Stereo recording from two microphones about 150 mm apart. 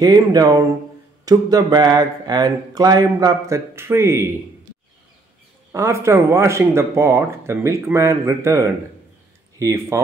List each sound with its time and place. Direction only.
0.0 s speech: 25° right (ahead or behind)
5.7 s speech: 20° right (ahead or behind)